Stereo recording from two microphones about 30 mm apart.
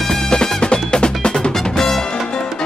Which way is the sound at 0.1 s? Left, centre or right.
Left.